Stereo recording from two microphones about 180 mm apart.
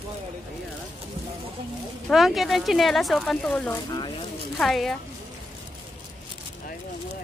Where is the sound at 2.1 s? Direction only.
Centre (ahead or behind).